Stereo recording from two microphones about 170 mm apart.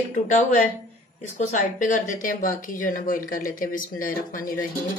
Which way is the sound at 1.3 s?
50° left (ahead or behind).